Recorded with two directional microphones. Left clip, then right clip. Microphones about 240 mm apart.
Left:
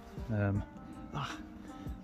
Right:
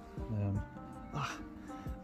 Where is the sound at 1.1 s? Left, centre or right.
Centre.